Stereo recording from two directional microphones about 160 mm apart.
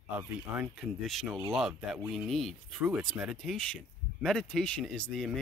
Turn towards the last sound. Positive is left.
turn(degrees=5)  # may be behind; listen again after turning